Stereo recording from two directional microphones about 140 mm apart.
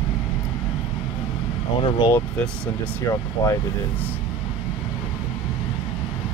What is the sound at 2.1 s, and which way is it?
Speech, 10° left (ahead or behind).